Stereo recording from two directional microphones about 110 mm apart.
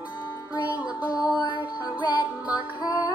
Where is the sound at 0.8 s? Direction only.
15° right (ahead or behind).